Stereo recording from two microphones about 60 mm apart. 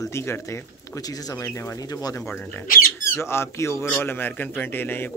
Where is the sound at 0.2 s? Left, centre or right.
Left.